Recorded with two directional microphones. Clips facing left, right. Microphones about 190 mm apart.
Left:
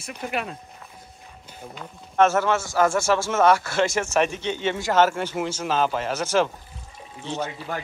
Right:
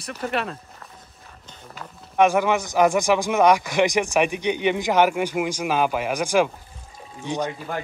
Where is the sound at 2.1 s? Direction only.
15° right (ahead or behind).